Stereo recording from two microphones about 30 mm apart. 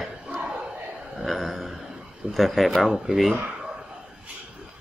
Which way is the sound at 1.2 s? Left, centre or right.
Centre.